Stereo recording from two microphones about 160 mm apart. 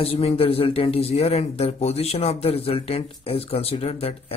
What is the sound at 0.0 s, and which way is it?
Speech, 40° left (ahead or behind).